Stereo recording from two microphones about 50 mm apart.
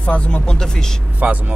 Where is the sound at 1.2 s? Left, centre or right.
Right.